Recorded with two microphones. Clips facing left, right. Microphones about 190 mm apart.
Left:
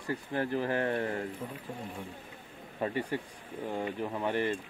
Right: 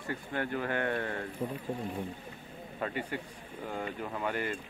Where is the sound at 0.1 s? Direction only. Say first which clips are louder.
Left 3 dB; 30° left (ahead or behind).